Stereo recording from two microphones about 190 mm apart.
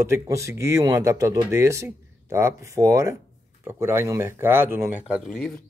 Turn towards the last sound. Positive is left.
turn(degrees=-5)  # may be behind; listen again after turning